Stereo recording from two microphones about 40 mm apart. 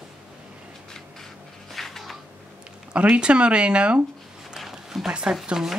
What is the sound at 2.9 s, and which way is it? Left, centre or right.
Speech, right.